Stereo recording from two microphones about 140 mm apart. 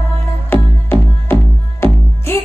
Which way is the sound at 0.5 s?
15° left (ahead or behind).